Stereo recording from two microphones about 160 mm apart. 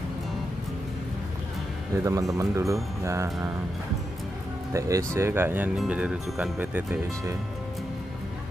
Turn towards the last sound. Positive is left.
turn(degrees=-10)  # may be behind; listen again after turning